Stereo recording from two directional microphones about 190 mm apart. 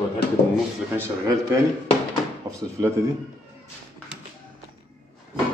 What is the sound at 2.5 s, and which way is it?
Drawer open or close, 20° right (ahead or behind).